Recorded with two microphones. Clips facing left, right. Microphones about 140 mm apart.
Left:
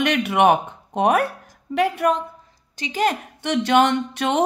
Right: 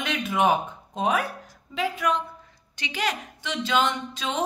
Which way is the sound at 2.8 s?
45° left (ahead or behind).